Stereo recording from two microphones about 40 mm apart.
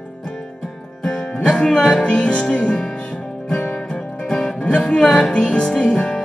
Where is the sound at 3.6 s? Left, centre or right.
Left.